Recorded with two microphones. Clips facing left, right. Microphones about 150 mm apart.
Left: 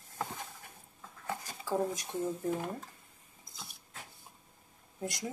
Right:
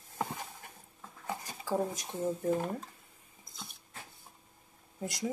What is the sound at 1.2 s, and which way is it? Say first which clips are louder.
Dishes: even; 15° right (ahead or behind).